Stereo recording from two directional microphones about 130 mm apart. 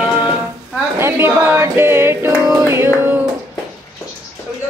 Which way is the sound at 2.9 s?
15° right (ahead or behind).